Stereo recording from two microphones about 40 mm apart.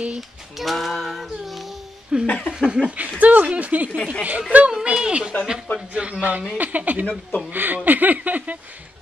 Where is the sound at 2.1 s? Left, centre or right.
Right.